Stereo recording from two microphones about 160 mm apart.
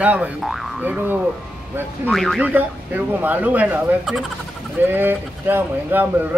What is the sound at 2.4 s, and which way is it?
Speech, 10° right (ahead or behind).